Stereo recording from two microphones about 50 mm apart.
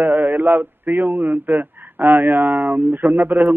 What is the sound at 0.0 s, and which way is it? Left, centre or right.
A man's voice, right.